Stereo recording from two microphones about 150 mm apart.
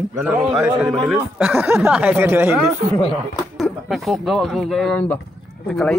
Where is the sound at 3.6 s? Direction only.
Centre (ahead or behind).